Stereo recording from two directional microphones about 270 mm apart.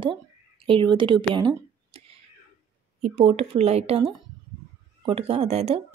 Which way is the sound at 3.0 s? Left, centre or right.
Right.